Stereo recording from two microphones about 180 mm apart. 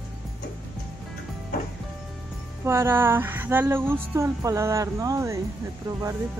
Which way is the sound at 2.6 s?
15° right (ahead or behind).